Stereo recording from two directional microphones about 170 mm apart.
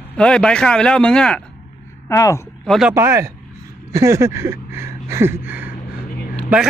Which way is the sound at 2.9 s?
15° right (ahead or behind).